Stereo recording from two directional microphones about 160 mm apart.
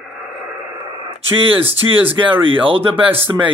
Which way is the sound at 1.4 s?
35° right (ahead or behind).